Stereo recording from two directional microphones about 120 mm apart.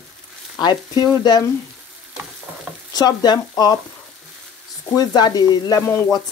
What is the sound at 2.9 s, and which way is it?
Speech, 35° left (ahead or behind).